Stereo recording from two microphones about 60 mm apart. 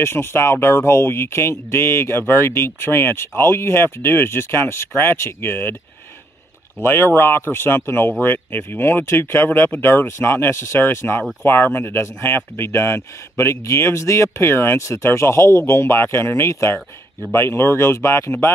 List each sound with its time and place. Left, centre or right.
0.0 s speech: left
6.8 s speech: left
14.8 s speech: left
15.0 s speech: left